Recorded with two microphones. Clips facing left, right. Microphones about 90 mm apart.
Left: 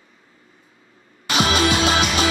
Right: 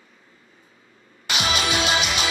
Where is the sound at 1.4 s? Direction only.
40° left (ahead or behind).